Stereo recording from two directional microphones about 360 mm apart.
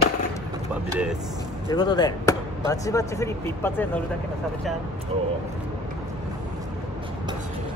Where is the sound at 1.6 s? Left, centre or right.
Centre.